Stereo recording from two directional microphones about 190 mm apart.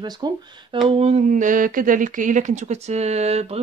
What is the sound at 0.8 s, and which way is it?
Speech, 30° right (ahead or behind).